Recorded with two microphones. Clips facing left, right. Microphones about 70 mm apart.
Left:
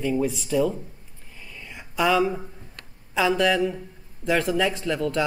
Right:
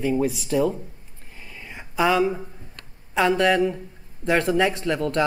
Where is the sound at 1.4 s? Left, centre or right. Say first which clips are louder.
Right 2 dB; right.